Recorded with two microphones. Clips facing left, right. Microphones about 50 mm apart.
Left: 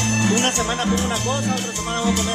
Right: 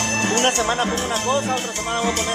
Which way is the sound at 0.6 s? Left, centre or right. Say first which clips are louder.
Even; right.